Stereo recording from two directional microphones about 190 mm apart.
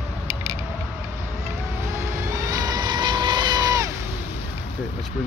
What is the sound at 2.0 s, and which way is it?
Vehicle, 15° right (ahead or behind).